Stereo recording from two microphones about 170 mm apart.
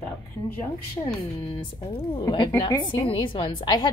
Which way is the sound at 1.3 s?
30° left (ahead or behind).